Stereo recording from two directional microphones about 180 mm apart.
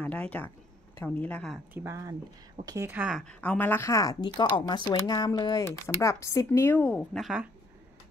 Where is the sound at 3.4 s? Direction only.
10° left (ahead or behind).